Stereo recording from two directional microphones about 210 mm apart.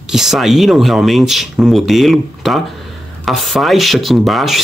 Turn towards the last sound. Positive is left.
turn(degrees=0)  # may be behind; listen again after turning